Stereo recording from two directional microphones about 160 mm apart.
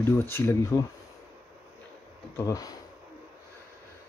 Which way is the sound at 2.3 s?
20° left (ahead or behind).